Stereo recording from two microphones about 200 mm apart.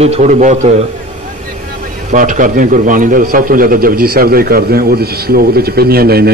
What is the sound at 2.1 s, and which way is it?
A man's voice, 40° right (ahead or behind).